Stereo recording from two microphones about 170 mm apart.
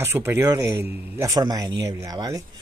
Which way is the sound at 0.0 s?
15° right (ahead or behind).